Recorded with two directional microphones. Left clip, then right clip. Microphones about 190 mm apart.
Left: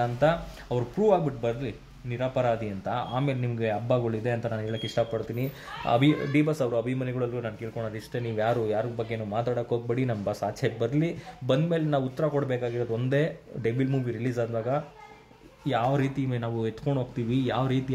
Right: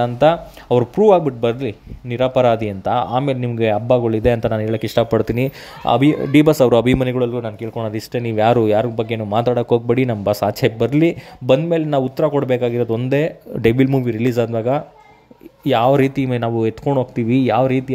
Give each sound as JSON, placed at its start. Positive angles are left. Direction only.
{"t": 0.0, "sound": "speech", "side_deg": -45}
{"t": 7.7, "sound": "speech", "side_deg": -35}